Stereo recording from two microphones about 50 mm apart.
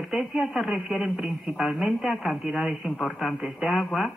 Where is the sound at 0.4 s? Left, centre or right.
Centre.